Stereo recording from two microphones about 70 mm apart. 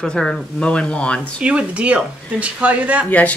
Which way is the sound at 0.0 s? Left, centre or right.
Centre.